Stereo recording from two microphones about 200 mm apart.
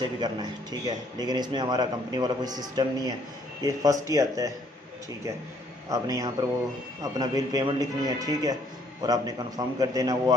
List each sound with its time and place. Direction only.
0.0 s speech: 20° right (ahead or behind)
5.9 s speech: 15° right (ahead or behind)